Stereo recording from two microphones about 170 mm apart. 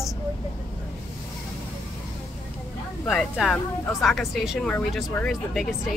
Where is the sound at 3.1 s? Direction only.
5° left (ahead or behind).